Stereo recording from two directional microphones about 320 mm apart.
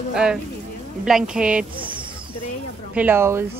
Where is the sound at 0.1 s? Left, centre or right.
Centre.